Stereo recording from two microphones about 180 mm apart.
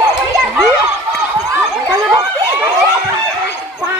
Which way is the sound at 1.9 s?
20° right (ahead or behind).